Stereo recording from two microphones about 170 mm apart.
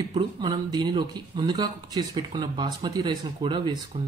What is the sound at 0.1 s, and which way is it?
Speech, 30° right (ahead or behind).